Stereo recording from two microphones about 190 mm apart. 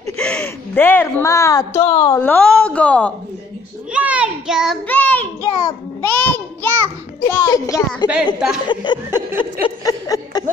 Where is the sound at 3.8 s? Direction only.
5° right (ahead or behind).